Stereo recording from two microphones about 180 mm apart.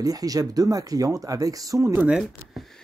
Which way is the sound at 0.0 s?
20° right (ahead or behind).